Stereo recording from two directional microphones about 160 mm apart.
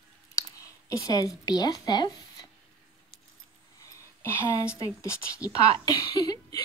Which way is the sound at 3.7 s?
20° left (ahead or behind).